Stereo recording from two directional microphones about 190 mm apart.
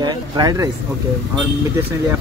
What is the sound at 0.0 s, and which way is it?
Speech, 20° right (ahead or behind).